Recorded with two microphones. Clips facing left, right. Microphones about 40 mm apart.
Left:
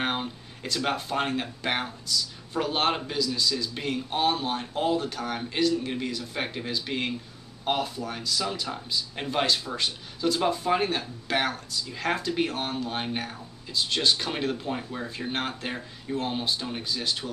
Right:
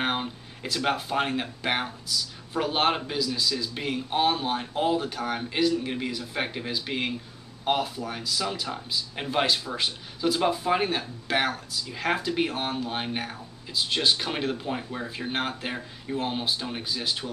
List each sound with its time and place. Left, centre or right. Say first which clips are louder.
0.0 s speech: right 1 dB; centre